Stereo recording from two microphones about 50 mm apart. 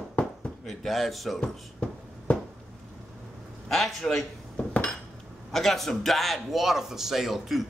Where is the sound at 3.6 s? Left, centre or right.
Centre.